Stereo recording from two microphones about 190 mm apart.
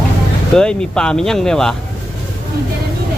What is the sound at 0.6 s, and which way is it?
Speech, 5° left (ahead or behind).